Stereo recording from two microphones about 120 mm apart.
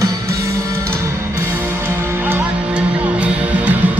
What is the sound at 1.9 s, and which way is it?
Music, 15° right (ahead or behind).